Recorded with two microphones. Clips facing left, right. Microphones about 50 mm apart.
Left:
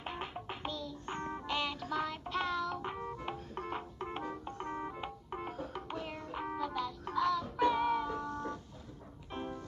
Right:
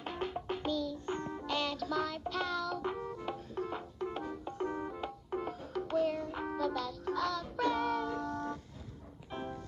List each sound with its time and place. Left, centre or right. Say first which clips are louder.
0.0 s music: right 3 dB; centre
3.5 s music: right 2 dB; left
4.7 s music: right 1 dB; centre